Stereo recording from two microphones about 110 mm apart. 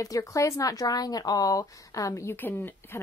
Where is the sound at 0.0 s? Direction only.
30° left (ahead or behind).